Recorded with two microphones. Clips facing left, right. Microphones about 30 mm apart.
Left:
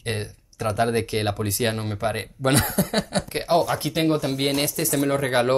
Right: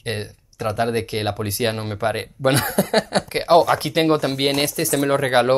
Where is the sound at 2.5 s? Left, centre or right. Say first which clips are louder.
Right 3 dB; right.